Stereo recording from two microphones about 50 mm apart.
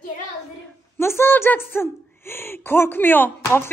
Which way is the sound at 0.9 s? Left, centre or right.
Left.